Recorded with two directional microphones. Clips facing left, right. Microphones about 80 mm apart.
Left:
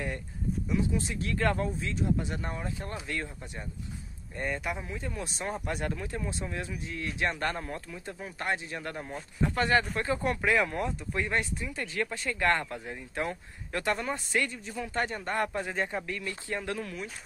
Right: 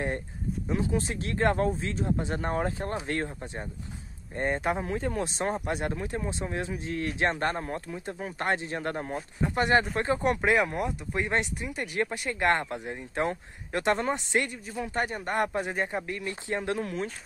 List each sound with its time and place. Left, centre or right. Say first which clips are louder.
0.7 s speech: right 2 dB; right
4.8 s speech: right 7 dB; right
5.4 s speech: right 2 dB; right
6.9 s speech: right 4 dB; right
9.1 s speech: right 1 dB; right